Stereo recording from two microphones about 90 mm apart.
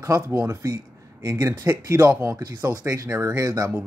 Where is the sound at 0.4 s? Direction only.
30° right (ahead or behind).